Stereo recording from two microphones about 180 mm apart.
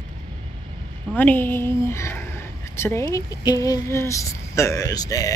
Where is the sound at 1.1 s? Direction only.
10° left (ahead or behind).